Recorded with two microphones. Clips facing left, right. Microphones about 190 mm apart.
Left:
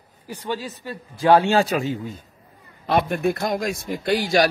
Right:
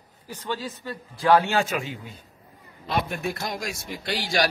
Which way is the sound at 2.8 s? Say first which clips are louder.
Left 7 dB; 55° left (ahead or behind).